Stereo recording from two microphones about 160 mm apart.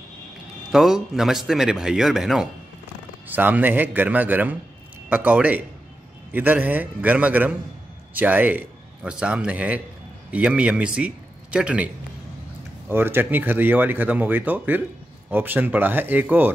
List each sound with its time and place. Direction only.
0.7 s a man's voice: 5° right (ahead or behind)
12.9 s speech: 15° right (ahead or behind)